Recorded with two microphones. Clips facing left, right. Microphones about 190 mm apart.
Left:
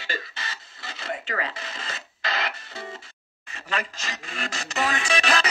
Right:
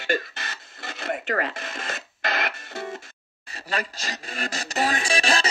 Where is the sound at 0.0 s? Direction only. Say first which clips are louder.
Right 8 dB; 50° right (ahead or behind).